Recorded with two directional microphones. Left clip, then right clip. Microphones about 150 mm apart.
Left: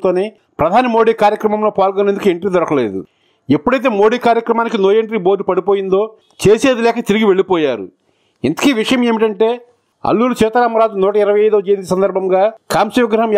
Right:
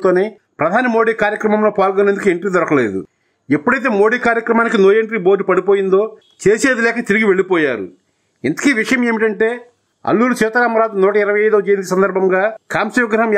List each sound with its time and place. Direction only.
0.0 s a man's voice: 30° left (ahead or behind)